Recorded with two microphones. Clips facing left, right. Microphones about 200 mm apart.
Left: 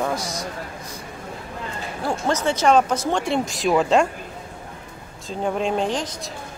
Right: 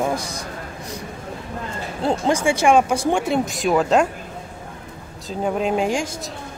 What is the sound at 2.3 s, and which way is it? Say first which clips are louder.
Speech: right 1 dB; 10° right (ahead or behind).